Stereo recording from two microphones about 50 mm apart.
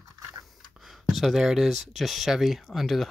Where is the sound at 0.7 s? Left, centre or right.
Centre.